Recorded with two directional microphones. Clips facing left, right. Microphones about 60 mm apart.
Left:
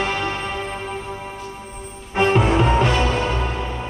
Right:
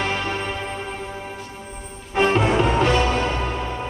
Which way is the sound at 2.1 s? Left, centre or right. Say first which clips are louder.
Left 1 dB; centre.